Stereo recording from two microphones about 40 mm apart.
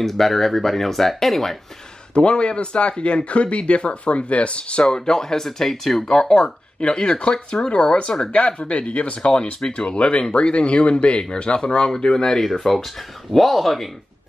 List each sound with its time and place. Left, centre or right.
0.0 s speech: centre
2.1 s speech: left; by 6.0 s centre
6.0 s speech: centre
12.4 s speech: centre